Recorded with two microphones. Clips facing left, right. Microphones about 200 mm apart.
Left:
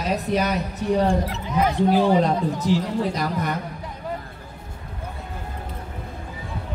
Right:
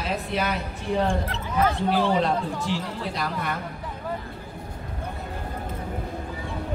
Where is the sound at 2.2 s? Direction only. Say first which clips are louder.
Left 3 dB; 40° left (ahead or behind).